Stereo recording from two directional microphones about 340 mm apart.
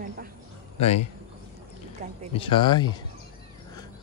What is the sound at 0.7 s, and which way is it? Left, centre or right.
Speech, centre.